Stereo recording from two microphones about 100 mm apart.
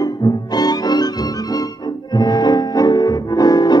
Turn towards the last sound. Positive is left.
turn(degrees=40)  # may be behind; listen again after turning